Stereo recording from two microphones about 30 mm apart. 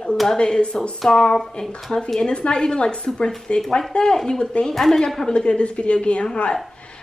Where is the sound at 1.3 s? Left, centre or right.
Centre.